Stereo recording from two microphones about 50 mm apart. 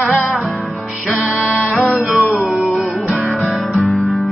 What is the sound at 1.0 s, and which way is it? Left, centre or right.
Music, right.